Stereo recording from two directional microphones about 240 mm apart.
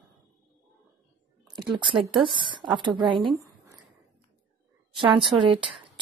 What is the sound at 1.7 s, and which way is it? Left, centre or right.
A woman's voice, centre.